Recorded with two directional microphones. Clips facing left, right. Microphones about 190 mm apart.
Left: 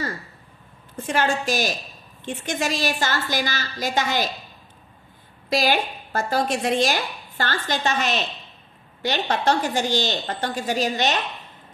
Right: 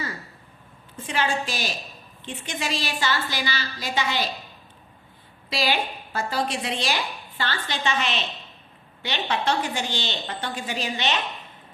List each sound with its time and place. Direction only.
0.9 s speech: 45° left (ahead or behind)
5.5 s speech: 45° left (ahead or behind)